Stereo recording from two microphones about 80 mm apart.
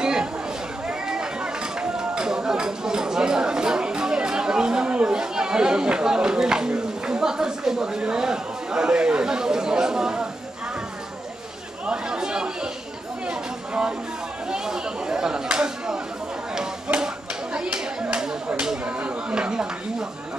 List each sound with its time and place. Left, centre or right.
0.0 s chatter: centre
0.8 s run: centre
11.8 s chatter: centre
13.3 s a sound: centre
14.5 s chatter: centre
16.5 s a sound: centre